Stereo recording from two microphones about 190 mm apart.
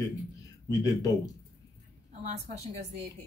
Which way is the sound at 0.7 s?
20° left (ahead or behind).